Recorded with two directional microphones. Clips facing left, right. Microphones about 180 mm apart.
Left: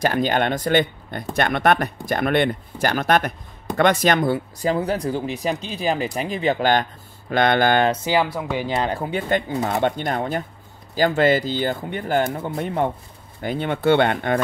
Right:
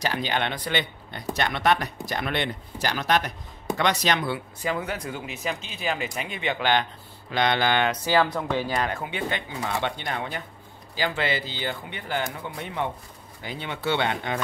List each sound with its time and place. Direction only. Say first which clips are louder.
0.0 s speech: left 7 dB; 50° left (ahead or behind)
7.9 s speech: left 2 dB; 20° left (ahead or behind)
8.6 s speech: left 4 dB; 30° left (ahead or behind); by 14.4 s 55° left (ahead or behind)